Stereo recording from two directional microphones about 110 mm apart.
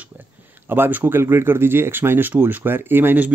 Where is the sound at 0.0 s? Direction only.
15° right (ahead or behind).